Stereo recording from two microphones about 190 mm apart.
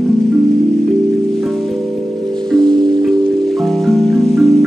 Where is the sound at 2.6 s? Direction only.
25° right (ahead or behind).